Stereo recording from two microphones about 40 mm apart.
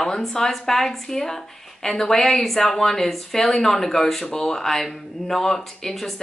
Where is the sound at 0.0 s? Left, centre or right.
Centre.